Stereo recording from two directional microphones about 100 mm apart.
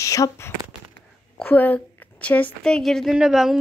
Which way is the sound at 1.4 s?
20° left (ahead or behind).